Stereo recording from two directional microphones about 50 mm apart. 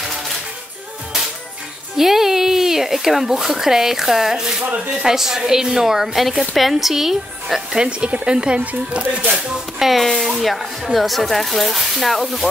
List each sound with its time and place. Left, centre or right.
2.0 s speech: centre
7.8 s speech: right
9.8 s speech: centre